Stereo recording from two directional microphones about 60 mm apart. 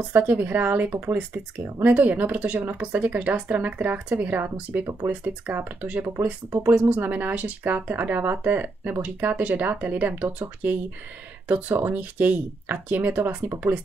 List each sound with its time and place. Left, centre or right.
0.1 s speech: right
5.9 s speech: right
11.4 s speech: right